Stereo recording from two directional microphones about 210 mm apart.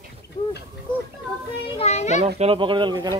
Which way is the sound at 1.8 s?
30° left (ahead or behind).